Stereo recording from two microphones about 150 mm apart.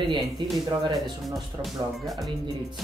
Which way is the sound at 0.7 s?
30° right (ahead or behind).